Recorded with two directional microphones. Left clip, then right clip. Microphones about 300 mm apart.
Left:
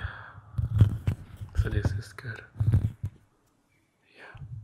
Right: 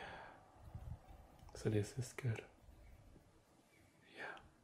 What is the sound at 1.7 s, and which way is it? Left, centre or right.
Speech, centre.